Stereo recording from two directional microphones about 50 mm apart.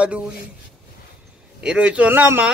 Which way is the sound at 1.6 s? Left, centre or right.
Right.